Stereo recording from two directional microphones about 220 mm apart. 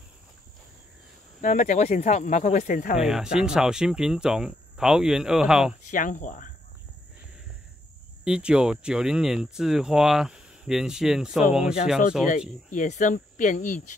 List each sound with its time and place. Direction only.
1.4 s speech: 35° left (ahead or behind)
3.0 s speech: centre (ahead or behind)
5.9 s speech: 35° left (ahead or behind)
8.2 s speech: 5° right (ahead or behind)
12.7 s speech: 35° left (ahead or behind)